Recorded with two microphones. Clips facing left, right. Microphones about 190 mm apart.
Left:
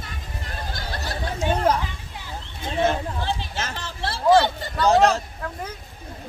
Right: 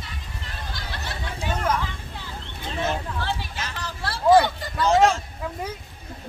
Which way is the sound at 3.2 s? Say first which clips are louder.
Left 2 dB; 15° left (ahead or behind).